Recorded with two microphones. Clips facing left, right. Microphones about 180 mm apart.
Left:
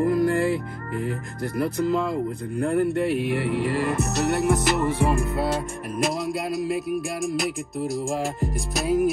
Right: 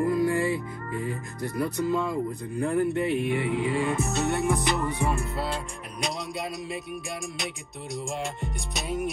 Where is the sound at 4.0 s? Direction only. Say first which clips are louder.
Left 3 dB; 75° left (ahead or behind).